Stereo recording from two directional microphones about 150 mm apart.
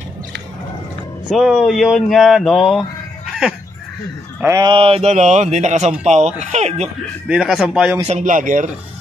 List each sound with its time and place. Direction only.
1.3 s speech: 5° right (ahead or behind)
4.6 s speech: 35° right (ahead or behind); by 6.9 s 50° right (ahead or behind)
7.2 s speech: 5° right (ahead or behind)
8.1 s speech: 55° right (ahead or behind)